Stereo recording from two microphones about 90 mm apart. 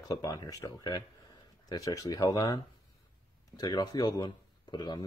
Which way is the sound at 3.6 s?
45° left (ahead or behind).